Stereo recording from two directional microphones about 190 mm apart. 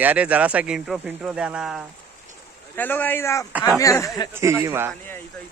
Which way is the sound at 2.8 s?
10° left (ahead or behind).